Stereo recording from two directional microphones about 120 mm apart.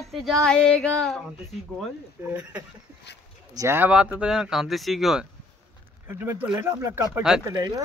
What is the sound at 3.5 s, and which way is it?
Speech, 20° right (ahead or behind).